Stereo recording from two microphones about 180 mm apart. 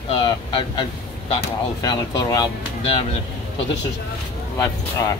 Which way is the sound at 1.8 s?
20° left (ahead or behind).